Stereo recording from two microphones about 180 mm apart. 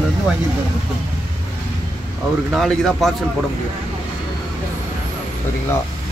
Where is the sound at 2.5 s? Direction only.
Centre (ahead or behind).